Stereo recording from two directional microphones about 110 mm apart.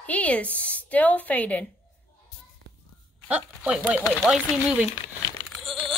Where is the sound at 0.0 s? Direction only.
15° left (ahead or behind).